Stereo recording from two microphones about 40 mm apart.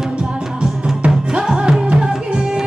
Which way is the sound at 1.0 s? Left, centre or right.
Right.